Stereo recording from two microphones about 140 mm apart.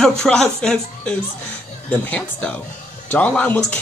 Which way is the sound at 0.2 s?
5° left (ahead or behind).